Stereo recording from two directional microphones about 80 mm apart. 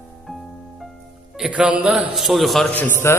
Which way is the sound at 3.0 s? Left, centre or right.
Left.